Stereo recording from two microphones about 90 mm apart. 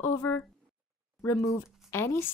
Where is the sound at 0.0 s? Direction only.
25° left (ahead or behind).